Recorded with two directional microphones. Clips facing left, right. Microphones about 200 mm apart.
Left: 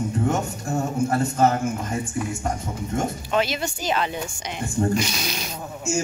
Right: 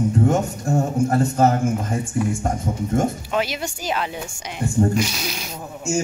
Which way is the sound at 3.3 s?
10° right (ahead or behind).